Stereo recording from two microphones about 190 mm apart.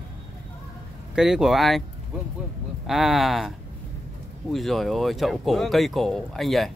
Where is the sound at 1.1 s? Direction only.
5° right (ahead or behind).